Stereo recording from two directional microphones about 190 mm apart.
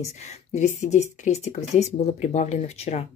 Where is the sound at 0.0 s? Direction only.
35° left (ahead or behind).